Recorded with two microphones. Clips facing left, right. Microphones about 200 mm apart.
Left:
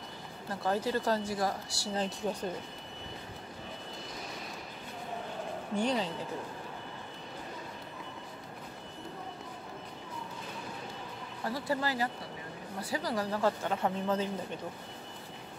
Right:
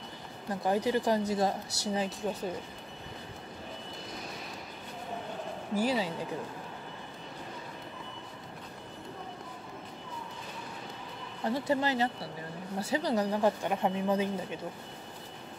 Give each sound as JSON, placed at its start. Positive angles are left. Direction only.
{"t": 0.5, "sound": "speech", "side_deg": -15}
{"t": 2.0, "sound": "speech", "side_deg": -5}
{"t": 5.8, "sound": "speech", "side_deg": -5}
{"t": 11.4, "sound": "speech", "side_deg": -20}